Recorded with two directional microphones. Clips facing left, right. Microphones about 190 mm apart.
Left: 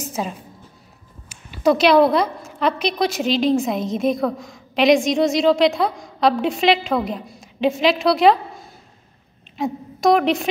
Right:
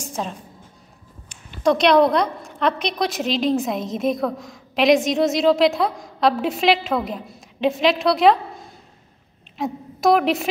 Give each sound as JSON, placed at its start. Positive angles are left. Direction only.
{"t": 0.0, "sound": "a sound", "side_deg": 5}
{"t": 1.3, "sound": "a woman's voice", "side_deg": 5}
{"t": 9.6, "sound": "a woman's voice", "side_deg": -5}